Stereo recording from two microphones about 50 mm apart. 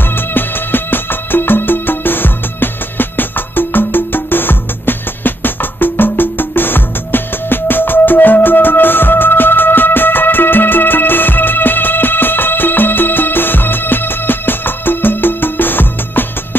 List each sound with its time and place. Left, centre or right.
0.1 s music: left